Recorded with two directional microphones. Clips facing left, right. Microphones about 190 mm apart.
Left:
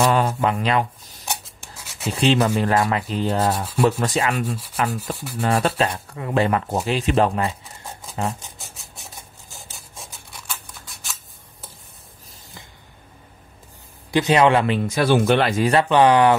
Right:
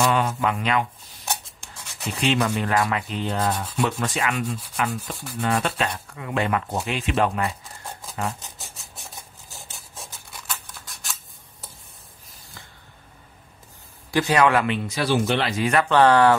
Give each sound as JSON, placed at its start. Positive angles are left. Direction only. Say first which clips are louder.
{"t": 0.0, "sound": "rub", "louder": "left 3 dB", "side_deg": 35}
{"t": 2.0, "sound": "rub", "louder": "left 4 dB", "side_deg": 35}
{"t": 8.2, "sound": "a man's voice", "louder": "left 3 dB", "side_deg": 30}
{"t": 8.5, "sound": "rub", "louder": "left 1 dB", "side_deg": 0}
{"t": 9.8, "sound": "scissors", "louder": "even", "side_deg": 0}
{"t": 14.1, "sound": "a man's voice", "louder": "left 3 dB", "side_deg": 20}
{"t": 14.9, "sound": "speech", "louder": "left 5 dB", "side_deg": 50}
{"t": 15.9, "sound": "speech", "louder": "even", "side_deg": 15}